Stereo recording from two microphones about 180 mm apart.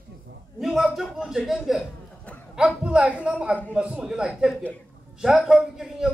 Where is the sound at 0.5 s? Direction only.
Centre (ahead or behind).